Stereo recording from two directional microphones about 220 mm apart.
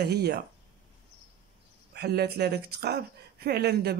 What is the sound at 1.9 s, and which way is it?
Speech, 50° right (ahead or behind).